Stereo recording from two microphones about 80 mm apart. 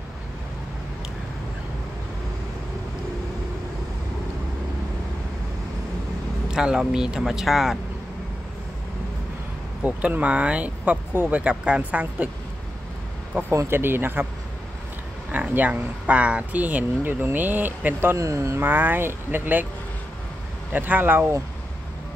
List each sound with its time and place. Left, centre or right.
6.5 s speech: centre
9.8 s speech: centre
13.7 s speech: right
15.3 s speech: right
18.1 s speech: right
18.6 s speech: right
20.7 s speech: right